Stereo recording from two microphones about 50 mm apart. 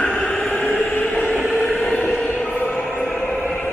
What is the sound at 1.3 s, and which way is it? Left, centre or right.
Train, centre.